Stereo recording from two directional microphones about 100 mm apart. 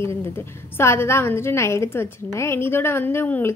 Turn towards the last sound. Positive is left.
turn(degrees=20)  # may be behind; listen again after turning